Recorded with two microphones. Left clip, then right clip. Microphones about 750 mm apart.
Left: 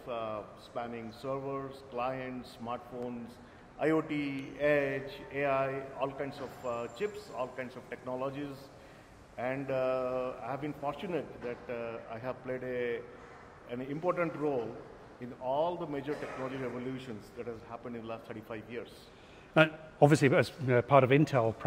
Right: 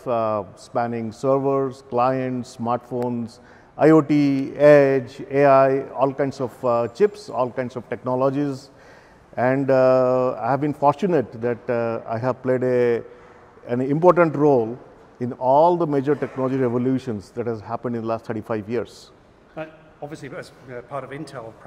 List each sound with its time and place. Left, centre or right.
0.0 s speech: right
19.5 s a man's voice: left